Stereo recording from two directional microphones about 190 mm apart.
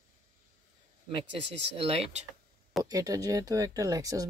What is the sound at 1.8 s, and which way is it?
Speech, 30° right (ahead or behind).